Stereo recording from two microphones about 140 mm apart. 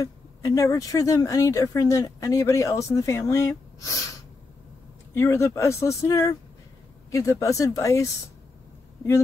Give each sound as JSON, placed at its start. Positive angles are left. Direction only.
{"t": 0.0, "sound": "speech", "side_deg": 25}
{"t": 5.1, "sound": "speech", "side_deg": 20}